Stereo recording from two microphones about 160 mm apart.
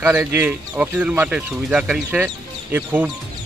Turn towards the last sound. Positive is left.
turn(degrees=-10)  # may be behind; listen again after turning